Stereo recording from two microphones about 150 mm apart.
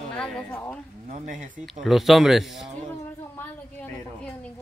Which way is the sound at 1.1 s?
60° right (ahead or behind).